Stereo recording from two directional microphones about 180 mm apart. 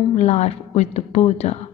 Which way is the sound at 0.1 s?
40° left (ahead or behind).